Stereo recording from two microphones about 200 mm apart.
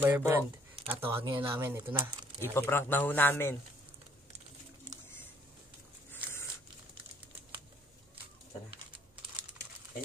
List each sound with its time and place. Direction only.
0.0 s speech: 10° right (ahead or behind)
0.9 s speech: 25° right (ahead or behind)
1.6 s speech: 10° right (ahead or behind)
2.5 s a man's voice: 10° left (ahead or behind)